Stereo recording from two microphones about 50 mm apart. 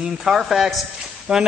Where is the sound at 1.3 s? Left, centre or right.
Right.